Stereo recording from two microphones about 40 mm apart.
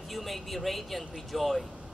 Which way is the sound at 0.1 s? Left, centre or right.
Centre.